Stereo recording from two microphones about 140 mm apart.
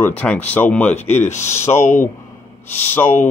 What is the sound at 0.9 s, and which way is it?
Speech, 50° left (ahead or behind).